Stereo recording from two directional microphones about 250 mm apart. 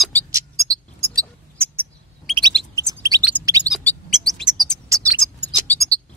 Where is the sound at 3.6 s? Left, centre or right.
Centre.